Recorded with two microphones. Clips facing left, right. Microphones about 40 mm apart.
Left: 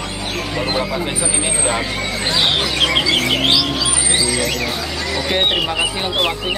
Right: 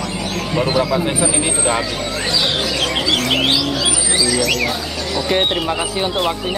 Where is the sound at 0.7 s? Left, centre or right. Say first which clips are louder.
Right 4 dB; left.